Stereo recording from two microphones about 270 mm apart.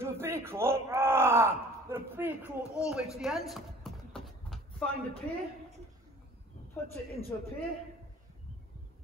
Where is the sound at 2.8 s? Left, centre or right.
Centre.